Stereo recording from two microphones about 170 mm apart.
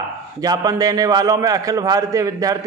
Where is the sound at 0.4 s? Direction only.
20° right (ahead or behind).